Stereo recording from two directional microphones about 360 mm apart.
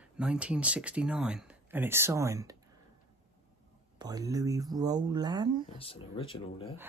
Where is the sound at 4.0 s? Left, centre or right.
Centre.